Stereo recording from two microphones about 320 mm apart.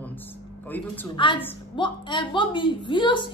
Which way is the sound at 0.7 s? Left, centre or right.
Centre.